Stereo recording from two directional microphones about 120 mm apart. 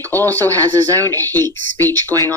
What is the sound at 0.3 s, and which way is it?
Speech, 15° left (ahead or behind).